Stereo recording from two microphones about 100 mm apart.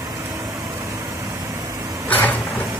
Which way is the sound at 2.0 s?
15° left (ahead or behind).